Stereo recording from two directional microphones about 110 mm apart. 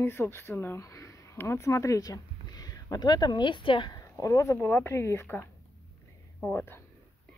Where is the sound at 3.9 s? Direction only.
30° left (ahead or behind).